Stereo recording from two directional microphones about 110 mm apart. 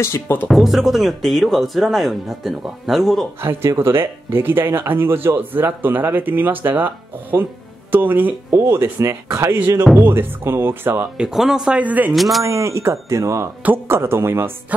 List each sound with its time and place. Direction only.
0.0 s speech: 20° left (ahead or behind)
0.5 s speech: centre (ahead or behind)
3.4 s speech: 25° right (ahead or behind)
11.1 s speech: 5° right (ahead or behind)
12.1 s speech: centre (ahead or behind)
12.4 s speech: 25° right (ahead or behind)